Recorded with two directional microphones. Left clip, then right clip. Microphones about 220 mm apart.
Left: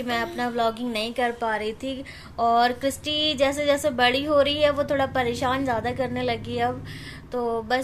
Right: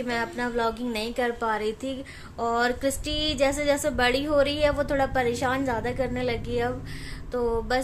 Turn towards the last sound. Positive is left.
turn(degrees=-5)  # may be behind; listen again after turning